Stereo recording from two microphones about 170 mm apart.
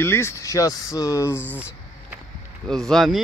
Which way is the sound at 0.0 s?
15° left (ahead or behind).